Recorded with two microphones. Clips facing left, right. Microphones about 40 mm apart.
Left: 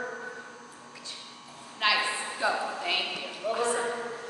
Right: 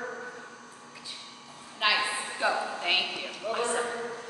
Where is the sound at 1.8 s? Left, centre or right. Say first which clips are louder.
Even; centre.